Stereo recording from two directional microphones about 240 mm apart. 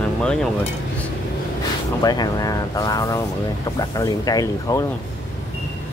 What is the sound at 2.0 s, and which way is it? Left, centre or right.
Speech, centre.